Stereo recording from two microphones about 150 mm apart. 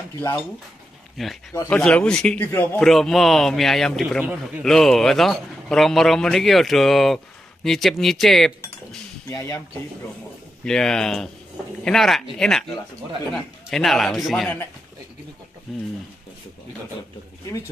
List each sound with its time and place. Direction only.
0.2 s dishes: 10° left (ahead or behind)
1.1 s a man's voice: centre (ahead or behind)
9.3 s speech: 20° left (ahead or behind)
10.6 s a man's voice: 5° left (ahead or behind)
15.7 s a man's voice: centre (ahead or behind)